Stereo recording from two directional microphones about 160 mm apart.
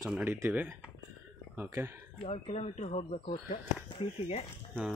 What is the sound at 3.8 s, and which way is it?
Speech, 35° left (ahead or behind).